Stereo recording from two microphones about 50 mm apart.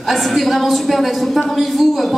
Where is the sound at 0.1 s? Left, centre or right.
Centre.